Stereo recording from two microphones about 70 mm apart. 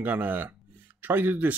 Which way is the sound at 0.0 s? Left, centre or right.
Right.